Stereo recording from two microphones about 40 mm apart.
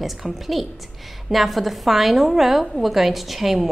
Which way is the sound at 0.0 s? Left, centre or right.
Centre.